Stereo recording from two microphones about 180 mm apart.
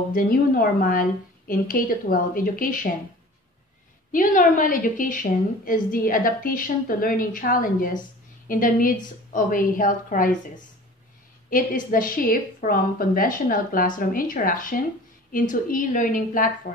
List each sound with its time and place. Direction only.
0.1 s a woman's voice: 55° left (ahead or behind)
4.1 s a woman's voice: 50° left (ahead or behind)